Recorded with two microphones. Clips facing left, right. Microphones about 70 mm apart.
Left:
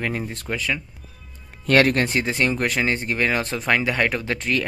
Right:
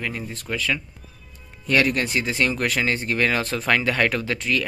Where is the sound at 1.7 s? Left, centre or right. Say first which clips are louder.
Left 3 dB; left.